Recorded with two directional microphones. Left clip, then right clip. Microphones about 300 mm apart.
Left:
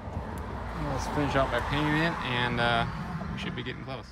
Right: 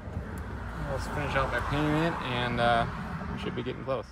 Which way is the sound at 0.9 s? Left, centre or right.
Left.